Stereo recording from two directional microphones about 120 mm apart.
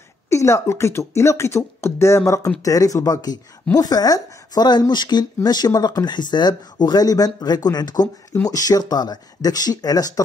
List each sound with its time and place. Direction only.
0.3 s speech: 25° left (ahead or behind)